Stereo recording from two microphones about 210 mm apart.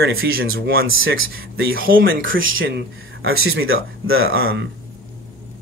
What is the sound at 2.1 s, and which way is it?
Speech, 65° right (ahead or behind).